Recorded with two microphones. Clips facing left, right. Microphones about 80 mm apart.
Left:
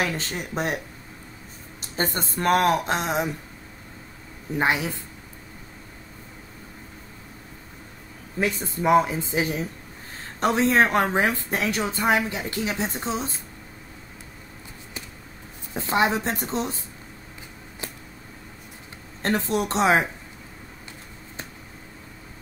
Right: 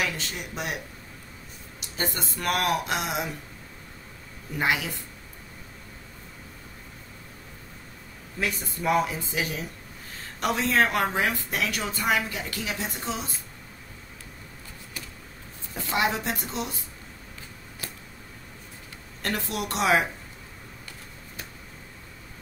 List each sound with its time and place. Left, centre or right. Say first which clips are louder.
0.0 s speech: left 3 dB; left
1.8 s speech: left 4 dB; left
4.6 s speech: left 3 dB; left
8.4 s a woman's voice: left 5 dB; left
15.7 s speech: left 4 dB; left
19.2 s a woman's voice: left 6 dB; left